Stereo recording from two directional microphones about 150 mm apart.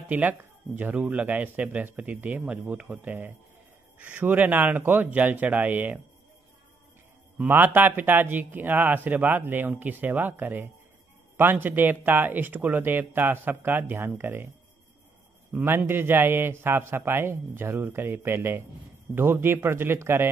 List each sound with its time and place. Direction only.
0.1 s speech: 10° right (ahead or behind)
7.3 s speech: 10° right (ahead or behind)
15.5 s speech: 15° right (ahead or behind)